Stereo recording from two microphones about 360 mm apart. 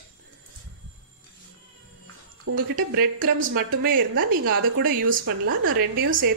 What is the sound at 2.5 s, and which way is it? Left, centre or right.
A woman's voice, right.